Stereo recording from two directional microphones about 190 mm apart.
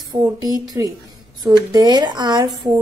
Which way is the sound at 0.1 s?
20° right (ahead or behind).